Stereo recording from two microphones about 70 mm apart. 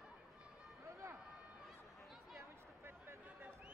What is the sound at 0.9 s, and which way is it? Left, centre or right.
Run, right.